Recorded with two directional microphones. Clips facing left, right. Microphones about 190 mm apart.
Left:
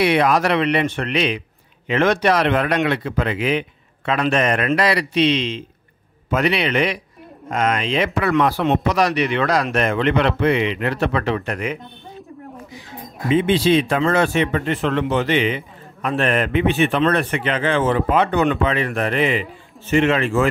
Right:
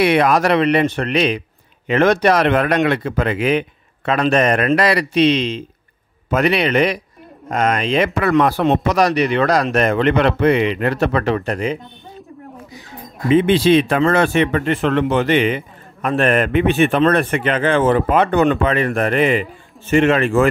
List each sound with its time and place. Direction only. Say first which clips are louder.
0.0 s speech: right 2 dB; 50° right (ahead or behind)
11.5 s speech: right 4 dB; 30° right (ahead or behind)
13.3 s speech: right 3 dB; 60° right (ahead or behind)